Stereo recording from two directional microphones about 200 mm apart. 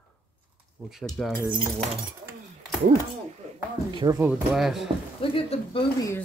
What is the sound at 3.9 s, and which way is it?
Speech, 20° right (ahead or behind).